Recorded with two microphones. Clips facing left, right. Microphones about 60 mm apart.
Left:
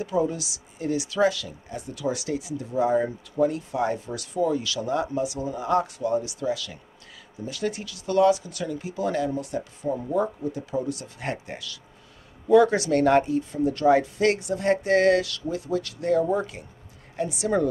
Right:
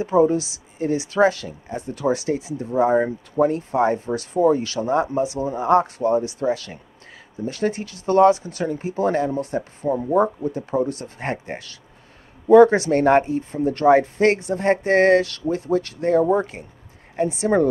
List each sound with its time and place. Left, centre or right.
0.0 s speech: right